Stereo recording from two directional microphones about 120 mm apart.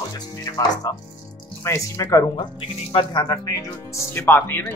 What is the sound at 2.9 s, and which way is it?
Speech, 45° left (ahead or behind).